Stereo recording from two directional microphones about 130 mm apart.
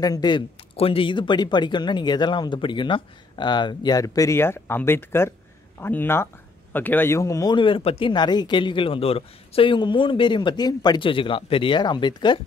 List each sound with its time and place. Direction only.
0.0 s speech: 30° left (ahead or behind)
0.7 s speech: 45° left (ahead or behind); by 7.5 s 25° left (ahead or behind)
7.5 s speech: 40° left (ahead or behind)